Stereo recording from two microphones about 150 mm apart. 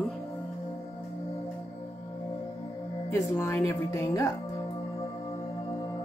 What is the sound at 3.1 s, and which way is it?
Speech, 20° left (ahead or behind).